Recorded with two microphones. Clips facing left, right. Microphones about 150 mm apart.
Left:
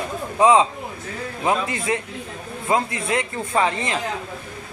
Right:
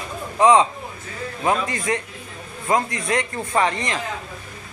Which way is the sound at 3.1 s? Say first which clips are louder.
Right 1 dB; 10° left (ahead or behind).